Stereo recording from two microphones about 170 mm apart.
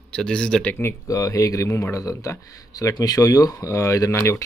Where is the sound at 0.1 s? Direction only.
5° left (ahead or behind).